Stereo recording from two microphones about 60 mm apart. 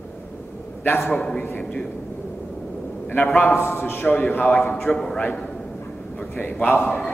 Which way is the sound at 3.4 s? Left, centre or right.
Left.